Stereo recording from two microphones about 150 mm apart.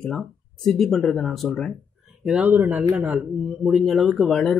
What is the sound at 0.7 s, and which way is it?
Speech, centre (ahead or behind).